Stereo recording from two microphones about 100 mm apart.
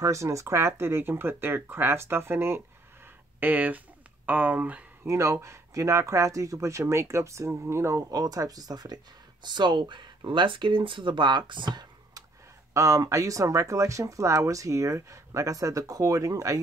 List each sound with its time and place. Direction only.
0.0 s speech: 30° right (ahead or behind); by 4.8 s 15° right (ahead or behind)
5.0 s speech: 30° right (ahead or behind)
8.1 s speech: 40° right (ahead or behind)
12.7 s speech: 35° right (ahead or behind)